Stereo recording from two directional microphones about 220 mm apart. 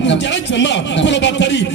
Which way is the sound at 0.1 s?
55° left (ahead or behind).